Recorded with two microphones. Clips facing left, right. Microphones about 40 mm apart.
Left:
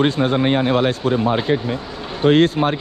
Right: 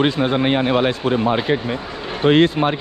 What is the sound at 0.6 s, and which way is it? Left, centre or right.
Speech, right.